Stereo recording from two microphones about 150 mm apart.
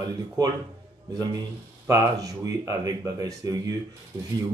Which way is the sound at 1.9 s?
20° right (ahead or behind).